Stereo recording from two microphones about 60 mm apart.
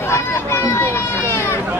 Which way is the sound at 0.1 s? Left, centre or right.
Left.